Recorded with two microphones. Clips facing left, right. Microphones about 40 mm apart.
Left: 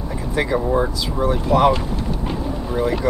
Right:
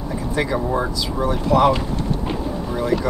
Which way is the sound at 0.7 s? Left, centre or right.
Centre.